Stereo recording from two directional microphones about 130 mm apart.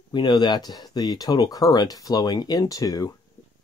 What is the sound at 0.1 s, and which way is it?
Speech, 35° left (ahead or behind).